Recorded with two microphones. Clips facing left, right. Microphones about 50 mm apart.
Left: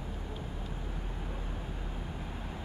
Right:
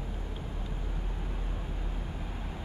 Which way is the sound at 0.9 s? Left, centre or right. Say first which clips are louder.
Even; centre.